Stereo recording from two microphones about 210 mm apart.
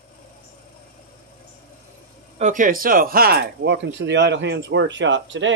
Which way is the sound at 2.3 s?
35° right (ahead or behind).